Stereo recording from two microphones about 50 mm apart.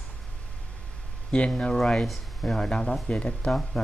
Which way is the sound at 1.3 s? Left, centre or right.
Left.